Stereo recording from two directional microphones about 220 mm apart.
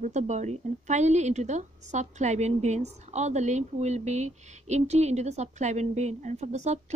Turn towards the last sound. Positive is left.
turn(degrees=-30)  # may be behind; listen again after turning